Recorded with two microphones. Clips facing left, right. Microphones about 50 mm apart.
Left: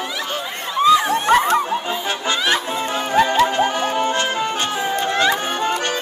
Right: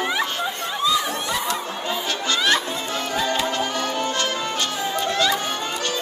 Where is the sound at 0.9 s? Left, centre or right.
Left.